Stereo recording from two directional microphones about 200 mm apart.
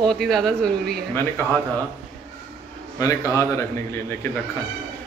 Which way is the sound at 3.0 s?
15° left (ahead or behind).